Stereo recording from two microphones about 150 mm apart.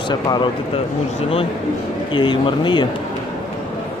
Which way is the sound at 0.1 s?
30° left (ahead or behind).